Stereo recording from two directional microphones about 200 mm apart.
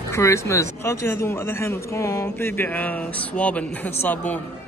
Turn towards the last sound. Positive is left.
turn(degrees=10)  # may be behind; listen again after turning